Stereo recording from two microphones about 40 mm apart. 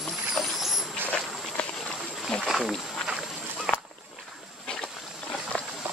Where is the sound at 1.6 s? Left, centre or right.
Left.